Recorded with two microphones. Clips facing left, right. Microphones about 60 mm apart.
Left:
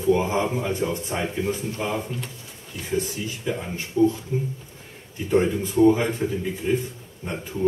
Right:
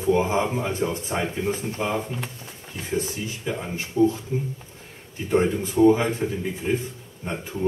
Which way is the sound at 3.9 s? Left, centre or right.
Right.